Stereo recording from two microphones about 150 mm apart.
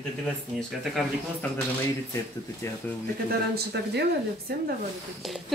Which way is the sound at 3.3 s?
90° right.